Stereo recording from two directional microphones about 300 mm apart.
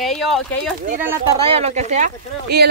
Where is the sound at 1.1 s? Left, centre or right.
Centre.